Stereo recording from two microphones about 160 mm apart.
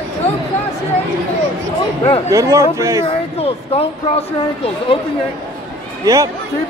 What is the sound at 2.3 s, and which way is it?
Speech, 20° right (ahead or behind).